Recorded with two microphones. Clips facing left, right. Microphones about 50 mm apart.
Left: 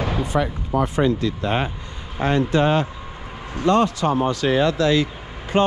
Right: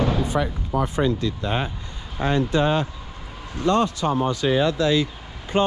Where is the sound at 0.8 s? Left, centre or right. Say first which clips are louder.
Left 3 dB; left.